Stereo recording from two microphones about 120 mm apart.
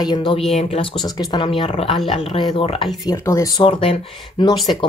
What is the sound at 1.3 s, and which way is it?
Speech, 45° left (ahead or behind).